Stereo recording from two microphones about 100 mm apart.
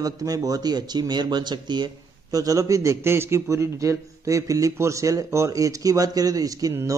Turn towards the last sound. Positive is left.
turn(degrees=-35)  # may be behind; listen again after turning